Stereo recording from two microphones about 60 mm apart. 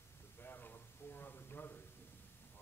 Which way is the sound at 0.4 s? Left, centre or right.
Left.